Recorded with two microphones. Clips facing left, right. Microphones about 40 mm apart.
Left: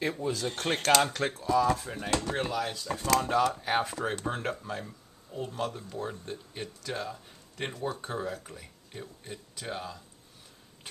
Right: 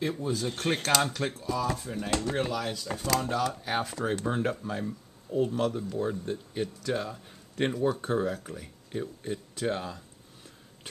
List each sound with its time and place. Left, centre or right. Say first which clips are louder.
0.5 s speech: left 2 dB; centre
1.0 s speech: left 1 dB; centre
4.3 s speech: right 4 dB; centre